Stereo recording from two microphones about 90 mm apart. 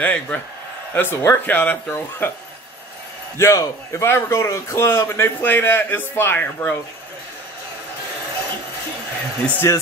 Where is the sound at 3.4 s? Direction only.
35° left (ahead or behind).